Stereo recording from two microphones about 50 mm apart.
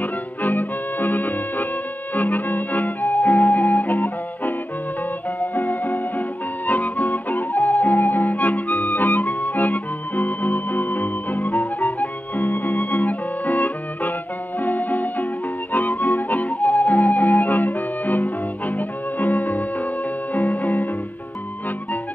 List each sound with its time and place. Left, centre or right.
0.0 s music: left